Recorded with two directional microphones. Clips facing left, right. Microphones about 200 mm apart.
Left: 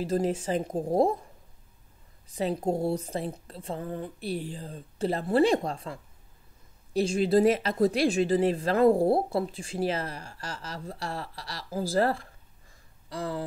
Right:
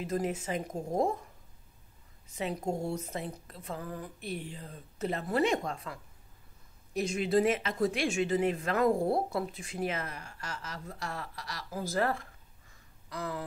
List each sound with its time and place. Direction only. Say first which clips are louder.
0.0 s speech: left 5 dB; 30° left (ahead or behind)
2.3 s speech: left 6 dB; 35° left (ahead or behind)